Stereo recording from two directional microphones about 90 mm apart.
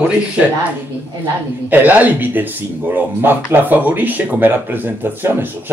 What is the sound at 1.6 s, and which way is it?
Speech, 20° right (ahead or behind).